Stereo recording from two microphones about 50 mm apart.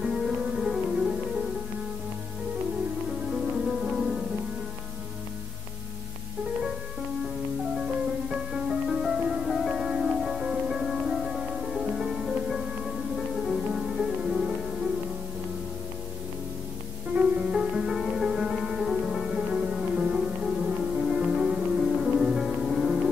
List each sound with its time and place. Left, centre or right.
0.0 s music: centre
0.4 s music: right
1.0 s music: centre
3.1 s music: centre
8.5 s music: centre
17.1 s music: right
17.5 s music: centre
19.3 s music: centre